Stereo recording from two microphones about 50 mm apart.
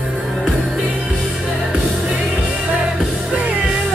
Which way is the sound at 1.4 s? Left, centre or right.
Centre.